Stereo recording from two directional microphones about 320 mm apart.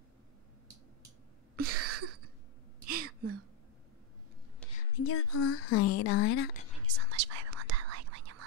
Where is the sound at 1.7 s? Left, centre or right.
Right.